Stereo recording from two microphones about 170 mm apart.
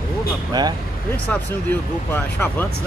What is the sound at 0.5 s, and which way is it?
Speech, 20° right (ahead or behind).